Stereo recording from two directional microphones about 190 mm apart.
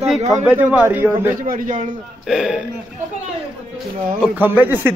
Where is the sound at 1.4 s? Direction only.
45° right (ahead or behind).